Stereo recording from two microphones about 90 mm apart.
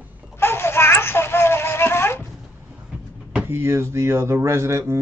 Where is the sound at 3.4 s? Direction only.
30° right (ahead or behind).